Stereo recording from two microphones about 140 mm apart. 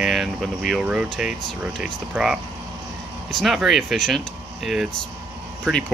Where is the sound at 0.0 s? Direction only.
Centre (ahead or behind).